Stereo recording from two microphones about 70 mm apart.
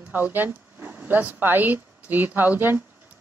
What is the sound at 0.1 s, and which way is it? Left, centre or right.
Speech, right.